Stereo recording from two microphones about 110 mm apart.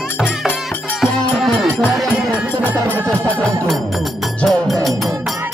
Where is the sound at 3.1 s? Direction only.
10° left (ahead or behind).